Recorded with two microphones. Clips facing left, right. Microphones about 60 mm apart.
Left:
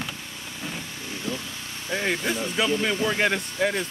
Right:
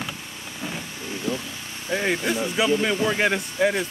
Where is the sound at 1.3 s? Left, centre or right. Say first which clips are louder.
Right 3 dB; right.